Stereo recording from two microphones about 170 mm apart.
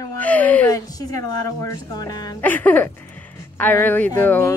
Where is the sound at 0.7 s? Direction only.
20° left (ahead or behind).